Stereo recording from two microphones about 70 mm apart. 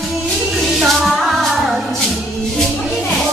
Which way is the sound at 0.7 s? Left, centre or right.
Centre.